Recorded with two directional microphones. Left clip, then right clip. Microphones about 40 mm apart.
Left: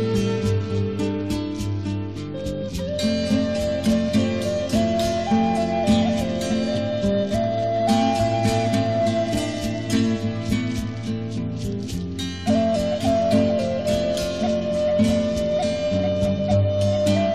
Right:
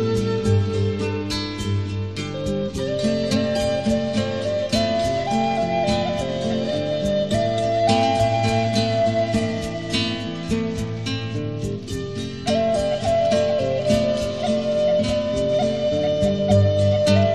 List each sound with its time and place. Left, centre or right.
0.0 s music: right
3.0 s music: right
12.4 s music: right
16.8 s music: right